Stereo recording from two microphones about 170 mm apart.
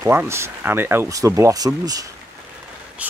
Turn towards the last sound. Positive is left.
turn(degrees=-10)  # may be behind; listen again after turning